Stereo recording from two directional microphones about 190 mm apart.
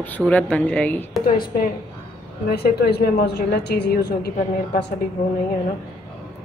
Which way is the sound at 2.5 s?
55° left (ahead or behind).